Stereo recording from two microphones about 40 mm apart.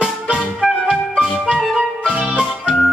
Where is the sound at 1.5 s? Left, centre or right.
Centre.